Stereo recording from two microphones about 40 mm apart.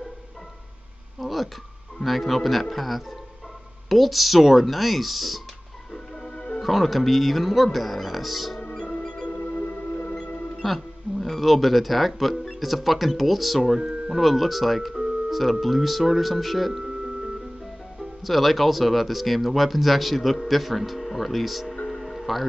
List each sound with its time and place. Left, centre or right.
1.2 s a sound: centre
2.0 s speech: centre
6.2 s music: left
6.6 s speech: centre
9.0 s music: centre
9.3 s music: left
10.6 s speech: centre
13.8 s speech: centre
18.2 s speech: centre
21.8 s music: centre